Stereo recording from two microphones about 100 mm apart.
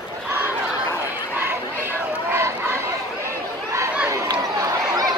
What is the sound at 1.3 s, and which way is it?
Chatter, 20° right (ahead or behind).